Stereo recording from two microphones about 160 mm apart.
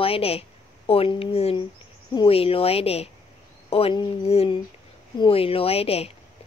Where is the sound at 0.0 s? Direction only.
35° left (ahead or behind).